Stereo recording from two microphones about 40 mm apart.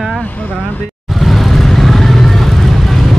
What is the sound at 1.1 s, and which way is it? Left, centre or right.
Vehicle, centre.